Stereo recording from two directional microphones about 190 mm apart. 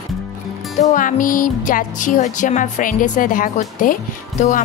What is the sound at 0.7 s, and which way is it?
Speech, 40° left (ahead or behind).